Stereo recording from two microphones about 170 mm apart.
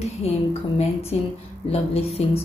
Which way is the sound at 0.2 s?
35° left (ahead or behind).